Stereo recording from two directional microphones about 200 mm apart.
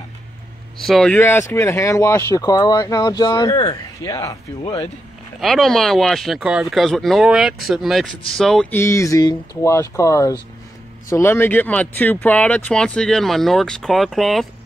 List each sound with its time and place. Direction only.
0.8 s speech: centre (ahead or behind)
5.4 s speech: centre (ahead or behind)